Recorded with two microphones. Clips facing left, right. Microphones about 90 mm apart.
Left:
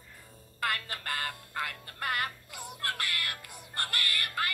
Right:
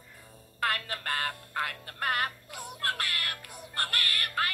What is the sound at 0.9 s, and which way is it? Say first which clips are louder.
Speech: right 3 dB; 40° right (ahead or behind).